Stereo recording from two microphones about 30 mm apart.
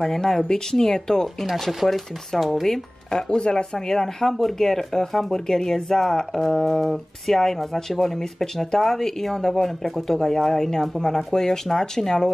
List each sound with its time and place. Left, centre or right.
0.0 s speech: centre
1.7 s speech: centre
2.7 s speech: centre
3.3 s speech: left
3.7 s speech: centre
4.3 s speech: centre
4.6 s speech: centre
6.8 s speech: centre
7.3 s speech: centre